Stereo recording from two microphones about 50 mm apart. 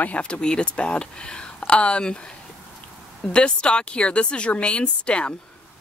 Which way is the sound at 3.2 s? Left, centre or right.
Centre.